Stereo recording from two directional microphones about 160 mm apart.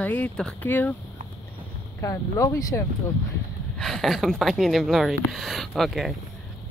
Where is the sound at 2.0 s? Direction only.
20° left (ahead or behind).